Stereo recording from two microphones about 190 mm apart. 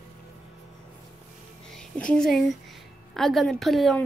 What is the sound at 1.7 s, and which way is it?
A woman's voice, 5° left (ahead or behind).